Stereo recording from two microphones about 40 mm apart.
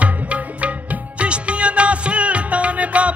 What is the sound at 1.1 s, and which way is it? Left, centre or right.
Music, right.